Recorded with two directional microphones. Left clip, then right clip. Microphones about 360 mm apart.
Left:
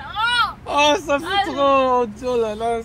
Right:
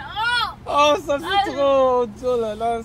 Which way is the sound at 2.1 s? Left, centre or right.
Left.